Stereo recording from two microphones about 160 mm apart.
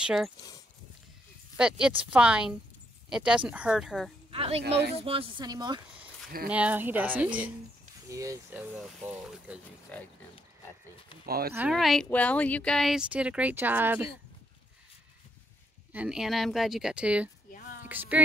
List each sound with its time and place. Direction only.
0.0 s speech: centre (ahead or behind)
1.6 s speech: 5° right (ahead or behind)
4.3 s speech: 35° right (ahead or behind)
4.6 s speech: 90° right
4.9 s speech: 35° right (ahead or behind)
5.4 s speech: 25° right (ahead or behind)
6.5 s speech: 10° right (ahead or behind)
9.9 s speech: 10° left (ahead or behind)
11.2 s speech: 70° right (ahead or behind)
11.7 s speech: centre (ahead or behind)
15.9 s speech: 5° right (ahead or behind)
17.5 s a sound: 60° left (ahead or behind)
17.8 s speech: 10° right (ahead or behind)